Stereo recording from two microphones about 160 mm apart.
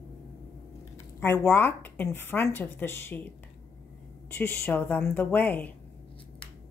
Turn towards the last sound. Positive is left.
turn(degrees=10)  # may be behind; listen again after turning